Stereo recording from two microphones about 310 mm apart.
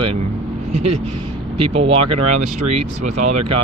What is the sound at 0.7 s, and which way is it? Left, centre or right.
Speech, right.